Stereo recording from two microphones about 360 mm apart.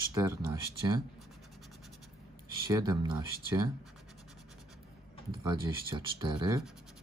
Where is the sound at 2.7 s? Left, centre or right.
Centre.